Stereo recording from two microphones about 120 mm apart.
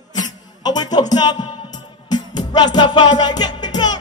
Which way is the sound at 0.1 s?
35° left (ahead or behind).